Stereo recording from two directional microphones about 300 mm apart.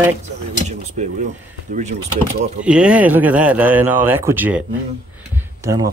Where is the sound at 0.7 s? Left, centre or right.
Right.